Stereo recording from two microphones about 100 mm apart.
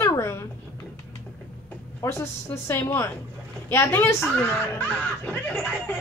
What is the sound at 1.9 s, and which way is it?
A woman's voice, 30° left (ahead or behind).